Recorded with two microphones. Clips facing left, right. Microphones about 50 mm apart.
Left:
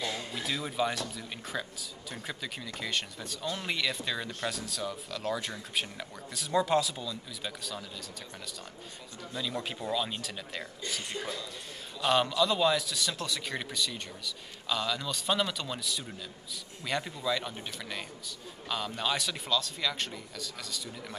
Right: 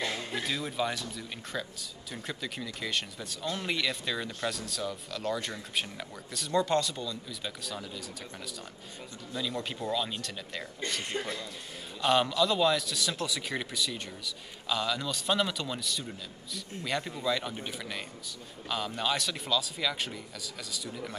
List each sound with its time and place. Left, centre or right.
0.0 s a sound: right
0.5 s speech: centre
9.3 s speech: centre
12.0 s speech: centre